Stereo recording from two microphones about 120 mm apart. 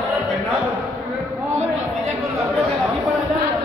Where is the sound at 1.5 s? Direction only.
65° right (ahead or behind).